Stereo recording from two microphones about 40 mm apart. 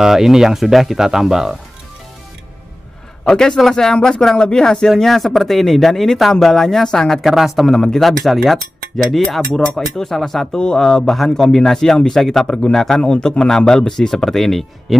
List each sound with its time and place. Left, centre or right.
0.0 s speech: centre
3.3 s a man's voice: centre
7.2 s speech: centre
7.6 s a man's voice: centre
8.0 s a man's voice: centre